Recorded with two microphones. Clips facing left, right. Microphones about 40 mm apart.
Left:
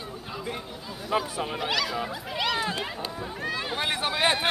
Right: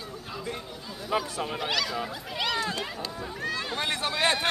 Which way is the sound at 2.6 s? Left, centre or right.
Centre.